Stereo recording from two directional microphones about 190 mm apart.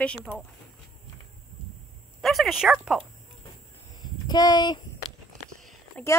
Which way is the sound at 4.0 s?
20° left (ahead or behind).